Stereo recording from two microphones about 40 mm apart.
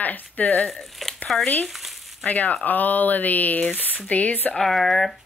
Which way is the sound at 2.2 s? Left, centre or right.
Left.